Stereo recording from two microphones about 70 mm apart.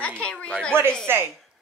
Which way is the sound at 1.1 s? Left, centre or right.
Right.